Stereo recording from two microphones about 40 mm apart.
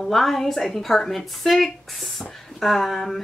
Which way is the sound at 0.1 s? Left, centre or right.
Centre.